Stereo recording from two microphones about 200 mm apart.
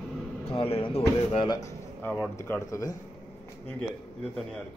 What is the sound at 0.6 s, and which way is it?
Speech, 25° left (ahead or behind).